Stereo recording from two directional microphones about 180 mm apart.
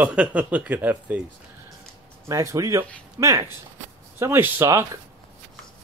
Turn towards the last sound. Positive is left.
turn(degrees=-15)  # may be behind; listen again after turning